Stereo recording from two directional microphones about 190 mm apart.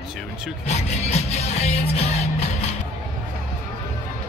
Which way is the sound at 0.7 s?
35° left (ahead or behind).